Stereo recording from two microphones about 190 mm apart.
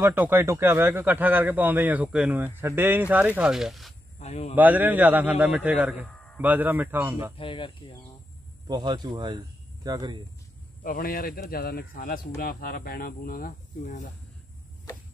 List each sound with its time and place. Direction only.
0.0 s a man's voice: 10° right (ahead or behind)
4.2 s a man's voice: 35° left (ahead or behind)
4.6 s a man's voice: 10° right (ahead or behind)
7.3 s speech: 25° left (ahead or behind)
8.6 s speech: 20° right (ahead or behind)
10.8 s speech: 50° left (ahead or behind)